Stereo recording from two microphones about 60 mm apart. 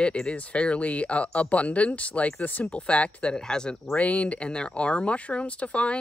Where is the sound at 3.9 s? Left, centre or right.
Left.